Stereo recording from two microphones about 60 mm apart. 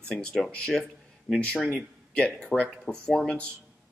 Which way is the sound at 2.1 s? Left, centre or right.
Left.